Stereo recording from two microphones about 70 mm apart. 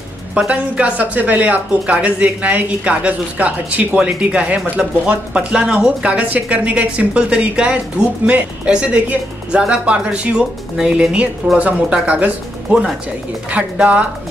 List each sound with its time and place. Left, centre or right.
0.5 s speech: centre
13.5 s speech: centre